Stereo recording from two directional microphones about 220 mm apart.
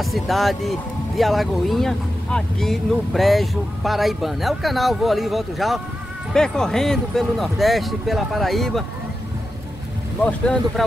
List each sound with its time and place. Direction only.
0.0 s speech: centre (ahead or behind)